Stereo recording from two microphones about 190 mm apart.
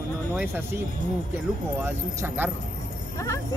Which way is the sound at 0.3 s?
10° right (ahead or behind).